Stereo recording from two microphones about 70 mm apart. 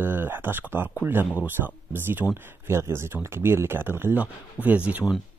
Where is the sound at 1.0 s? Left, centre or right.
Right.